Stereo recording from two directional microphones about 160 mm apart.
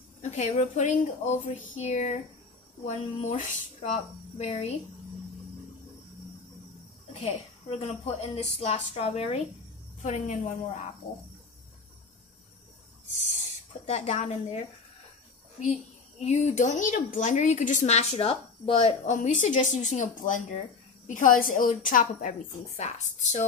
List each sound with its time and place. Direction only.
0.2 s a woman's voice: 45° left (ahead or behind)
7.7 s a woman's voice: 35° left (ahead or behind)
13.8 s a woman's voice: 45° left (ahead or behind)
16.2 s a woman's voice: 45° left (ahead or behind)